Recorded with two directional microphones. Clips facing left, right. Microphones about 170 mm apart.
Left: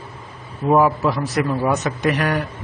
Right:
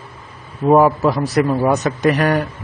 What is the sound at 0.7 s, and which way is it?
Speech, 40° right (ahead or behind).